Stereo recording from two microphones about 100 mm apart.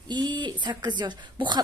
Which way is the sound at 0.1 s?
50° right (ahead or behind).